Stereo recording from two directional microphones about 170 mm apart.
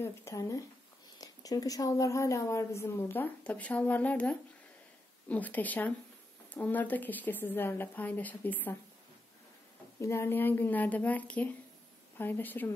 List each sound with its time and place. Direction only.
0.0 s speech: 15° left (ahead or behind)
9.9 s speech: 15° left (ahead or behind)